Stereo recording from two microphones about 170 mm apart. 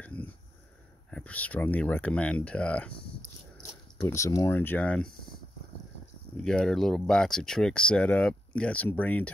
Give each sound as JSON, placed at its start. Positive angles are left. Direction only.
{"t": 0.0, "sound": "a sound", "side_deg": 10}
{"t": 1.1, "sound": "speech", "side_deg": 10}
{"t": 4.0, "sound": "speech", "side_deg": 15}
{"t": 6.3, "sound": "speech", "side_deg": 5}